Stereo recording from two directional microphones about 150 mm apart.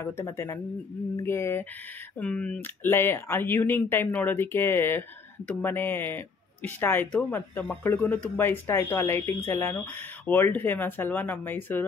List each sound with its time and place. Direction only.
0.0 s speech: 15° left (ahead or behind)